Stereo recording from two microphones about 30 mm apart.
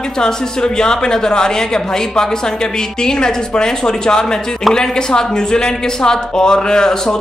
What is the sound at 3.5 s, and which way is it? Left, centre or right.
Speech, left.